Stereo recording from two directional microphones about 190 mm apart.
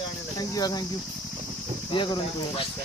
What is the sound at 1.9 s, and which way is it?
Speech, 25° left (ahead or behind).